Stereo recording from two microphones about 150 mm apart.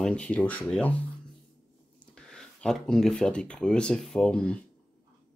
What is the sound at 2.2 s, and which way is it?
Speech, 5° left (ahead or behind).